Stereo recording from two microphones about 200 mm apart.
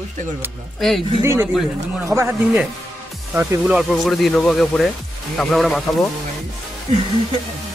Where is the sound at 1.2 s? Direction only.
15° right (ahead or behind).